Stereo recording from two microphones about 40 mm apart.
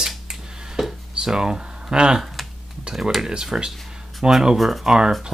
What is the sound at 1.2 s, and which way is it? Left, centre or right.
Speech, centre.